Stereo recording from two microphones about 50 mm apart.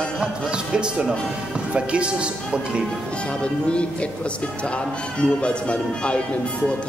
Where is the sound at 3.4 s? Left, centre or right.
Left.